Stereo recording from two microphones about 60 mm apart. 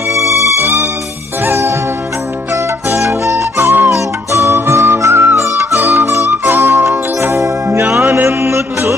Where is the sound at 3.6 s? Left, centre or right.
Right.